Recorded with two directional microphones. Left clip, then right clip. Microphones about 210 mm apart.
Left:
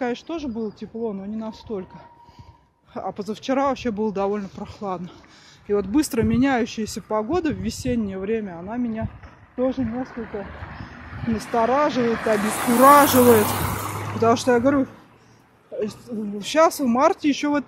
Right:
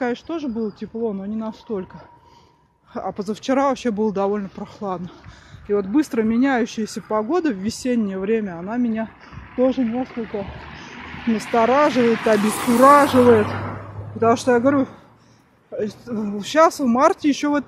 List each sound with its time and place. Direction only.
0.0 s speech: 20° right (ahead or behind); by 10.0 s 40° right (ahead or behind)
10.9 s vehicle: 25° left (ahead or behind)
11.5 s speech: 35° right (ahead or behind)
12.0 s speech: 30° left (ahead or behind)
12.4 s speech: 40° left (ahead or behind)
14.2 s speech: 5° right (ahead or behind)